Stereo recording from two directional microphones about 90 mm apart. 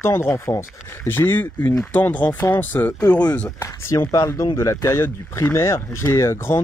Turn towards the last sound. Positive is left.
turn(degrees=30)  # may be behind; listen again after turning